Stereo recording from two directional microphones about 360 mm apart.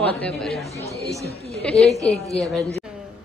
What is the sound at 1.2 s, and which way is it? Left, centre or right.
Speech, left.